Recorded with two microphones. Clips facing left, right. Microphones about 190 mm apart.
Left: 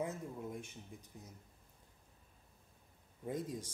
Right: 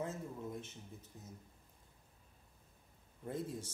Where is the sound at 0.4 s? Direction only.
15° left (ahead or behind).